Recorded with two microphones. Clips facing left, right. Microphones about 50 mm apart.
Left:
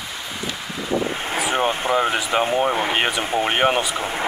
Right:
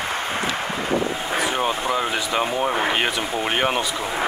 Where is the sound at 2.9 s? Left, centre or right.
Centre.